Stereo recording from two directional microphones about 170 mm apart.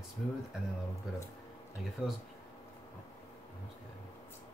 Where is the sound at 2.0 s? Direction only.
5° right (ahead or behind).